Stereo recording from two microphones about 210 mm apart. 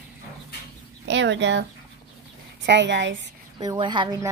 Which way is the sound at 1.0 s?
60° right (ahead or behind).